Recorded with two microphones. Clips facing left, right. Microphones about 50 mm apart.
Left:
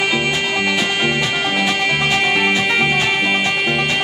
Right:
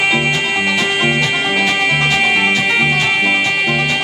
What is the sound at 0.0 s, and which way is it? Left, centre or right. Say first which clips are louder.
Music: right 3 dB; centre.